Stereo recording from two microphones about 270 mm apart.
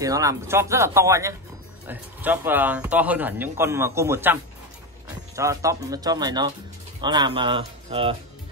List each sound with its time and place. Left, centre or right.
0.0 s speech: centre